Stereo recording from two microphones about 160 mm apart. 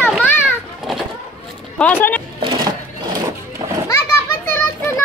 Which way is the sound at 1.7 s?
10° left (ahead or behind).